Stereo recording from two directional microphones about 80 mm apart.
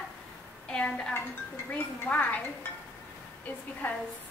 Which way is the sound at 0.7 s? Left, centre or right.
Centre.